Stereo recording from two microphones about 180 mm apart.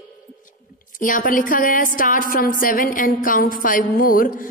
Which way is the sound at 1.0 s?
50° left (ahead or behind).